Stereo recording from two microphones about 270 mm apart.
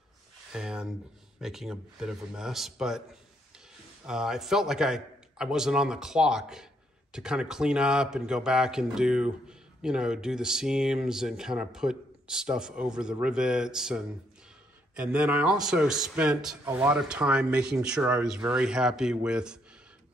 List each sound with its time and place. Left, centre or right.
0.5 s a man's voice: centre
4.0 s a man's voice: centre